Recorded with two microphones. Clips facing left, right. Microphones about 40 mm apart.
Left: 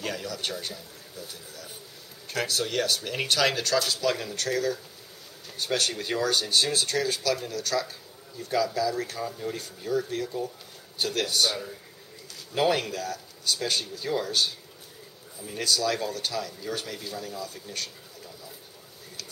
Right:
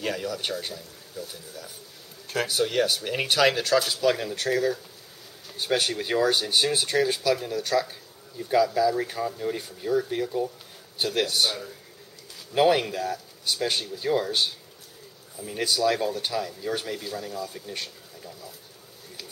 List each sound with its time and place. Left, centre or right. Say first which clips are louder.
0.0 s speech: right 3 dB; centre
12.5 s speech: right 4 dB; centre